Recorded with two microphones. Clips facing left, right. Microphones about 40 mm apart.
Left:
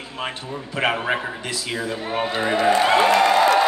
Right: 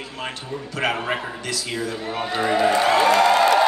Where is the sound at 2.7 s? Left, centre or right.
Left.